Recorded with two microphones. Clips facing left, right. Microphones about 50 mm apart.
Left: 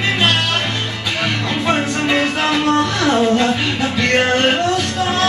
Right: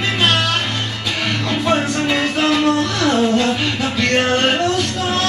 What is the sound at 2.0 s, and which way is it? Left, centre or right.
Music, centre.